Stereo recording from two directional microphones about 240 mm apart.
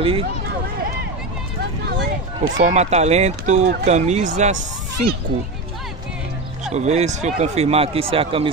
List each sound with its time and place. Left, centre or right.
0.0 s speech: right
2.6 s speech: right
6.7 s speech: right